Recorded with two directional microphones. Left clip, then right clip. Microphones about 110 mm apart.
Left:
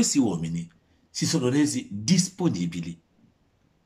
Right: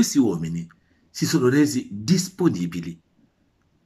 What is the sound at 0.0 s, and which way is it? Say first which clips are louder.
Speech: right 3 dB; 10° left (ahead or behind).